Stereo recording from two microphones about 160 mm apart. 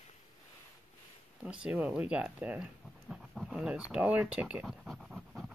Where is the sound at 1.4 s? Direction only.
10° right (ahead or behind).